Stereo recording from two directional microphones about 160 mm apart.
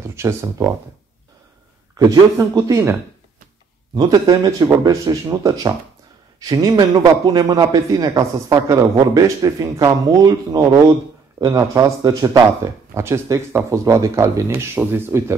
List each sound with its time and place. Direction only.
0.0 s speech: 15° right (ahead or behind)
2.0 s a man's voice: 25° right (ahead or behind)